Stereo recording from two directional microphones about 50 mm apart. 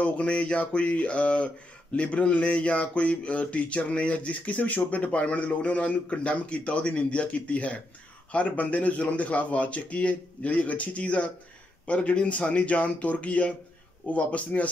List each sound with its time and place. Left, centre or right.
0.0 s speech: left